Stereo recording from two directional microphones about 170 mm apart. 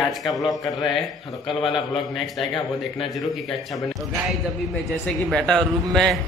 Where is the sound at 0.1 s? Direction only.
Centre (ahead or behind).